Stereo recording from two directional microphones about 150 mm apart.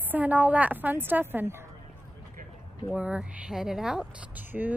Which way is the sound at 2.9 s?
10° right (ahead or behind).